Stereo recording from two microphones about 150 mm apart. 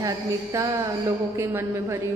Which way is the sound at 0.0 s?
20° right (ahead or behind).